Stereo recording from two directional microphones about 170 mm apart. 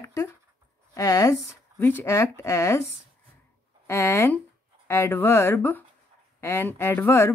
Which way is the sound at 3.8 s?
15° left (ahead or behind).